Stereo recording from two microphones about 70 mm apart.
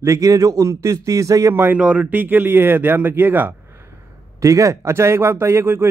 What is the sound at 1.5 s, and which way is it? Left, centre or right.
Speech, right.